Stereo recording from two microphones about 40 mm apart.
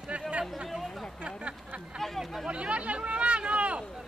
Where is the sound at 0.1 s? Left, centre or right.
Right.